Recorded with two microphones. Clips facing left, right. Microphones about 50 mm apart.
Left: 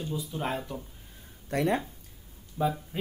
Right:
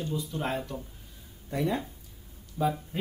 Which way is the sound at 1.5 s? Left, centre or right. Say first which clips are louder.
Left 2 dB; left.